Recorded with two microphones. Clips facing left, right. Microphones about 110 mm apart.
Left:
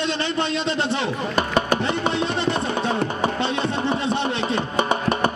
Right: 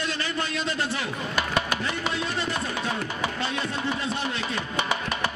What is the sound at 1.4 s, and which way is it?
Music, 40° left (ahead or behind).